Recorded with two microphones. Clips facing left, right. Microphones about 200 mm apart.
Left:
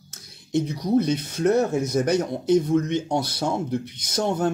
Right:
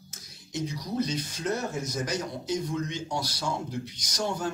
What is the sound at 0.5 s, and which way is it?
Speech, 60° left (ahead or behind).